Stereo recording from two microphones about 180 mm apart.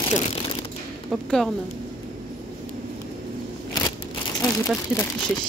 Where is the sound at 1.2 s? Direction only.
5° left (ahead or behind).